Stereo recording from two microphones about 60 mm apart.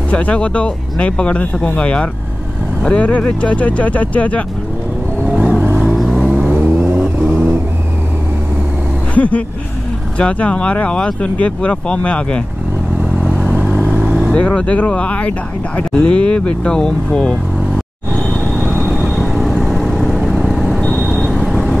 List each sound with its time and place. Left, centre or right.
0.1 s speech: left
5.4 s vehicle: right
5.8 s vehicle: centre
6.5 s vehicle: right
7.0 s vehicle: centre
9.1 s speech: left
14.3 s speech: centre
18.1 s vehicle: centre
19.1 s vehicle: centre